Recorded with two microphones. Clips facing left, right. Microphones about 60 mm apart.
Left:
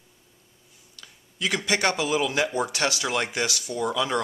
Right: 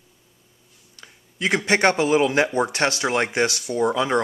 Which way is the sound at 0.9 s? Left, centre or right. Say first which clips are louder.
Right 3 dB; right.